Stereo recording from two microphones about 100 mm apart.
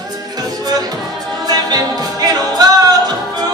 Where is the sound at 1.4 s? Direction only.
40° right (ahead or behind).